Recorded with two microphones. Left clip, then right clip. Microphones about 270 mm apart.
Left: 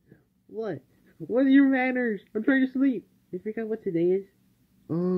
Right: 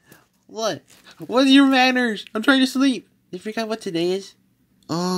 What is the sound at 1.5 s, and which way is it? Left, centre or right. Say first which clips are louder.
Speech: right 8 dB; right.